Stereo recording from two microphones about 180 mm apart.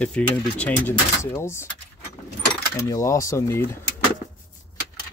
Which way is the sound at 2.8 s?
15° left (ahead or behind).